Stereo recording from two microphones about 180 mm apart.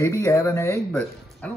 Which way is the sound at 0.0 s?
15° left (ahead or behind).